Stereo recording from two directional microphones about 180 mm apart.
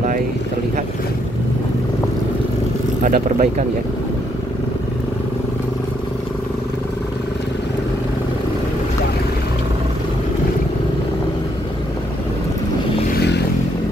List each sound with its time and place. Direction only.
3.0 s speech: 45° right (ahead or behind)